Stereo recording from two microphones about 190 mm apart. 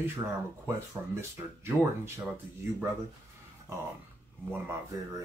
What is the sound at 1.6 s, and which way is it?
Speech, 10° right (ahead or behind).